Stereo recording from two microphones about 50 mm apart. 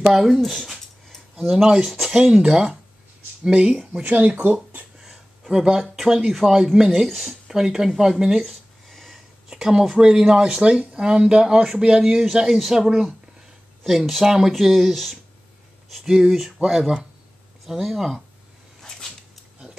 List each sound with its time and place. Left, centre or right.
0.0 s speech: centre
0.4 s dog: centre
1.5 s speech: centre
2.1 s speech: centre
4.0 s speech: right
5.5 s speech: centre
6.6 s speech: centre
7.1 s speech: centre
7.4 s speech: centre
8.0 s a sound: centre
9.6 s speech: centre
16.0 s speech: centre
18.8 s a sound: centre